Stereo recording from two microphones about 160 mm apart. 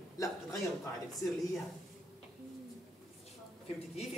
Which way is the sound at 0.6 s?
Centre (ahead or behind).